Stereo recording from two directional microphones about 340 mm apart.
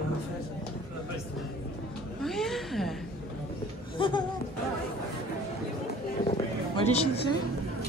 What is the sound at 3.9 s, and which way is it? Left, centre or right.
Speech, centre.